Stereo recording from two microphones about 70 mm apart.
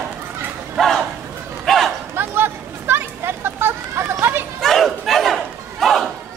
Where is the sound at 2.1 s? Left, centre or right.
Right.